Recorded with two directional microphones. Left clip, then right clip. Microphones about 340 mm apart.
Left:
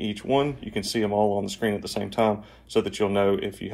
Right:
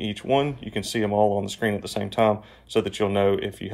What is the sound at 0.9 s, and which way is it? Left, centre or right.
Speech, right.